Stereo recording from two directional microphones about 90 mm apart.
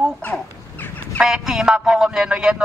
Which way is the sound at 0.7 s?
20° left (ahead or behind).